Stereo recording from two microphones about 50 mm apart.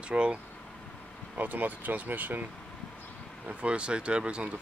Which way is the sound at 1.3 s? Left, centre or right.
Right.